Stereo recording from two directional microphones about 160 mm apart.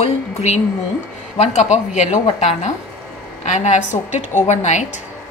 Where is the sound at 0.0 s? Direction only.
45° left (ahead or behind).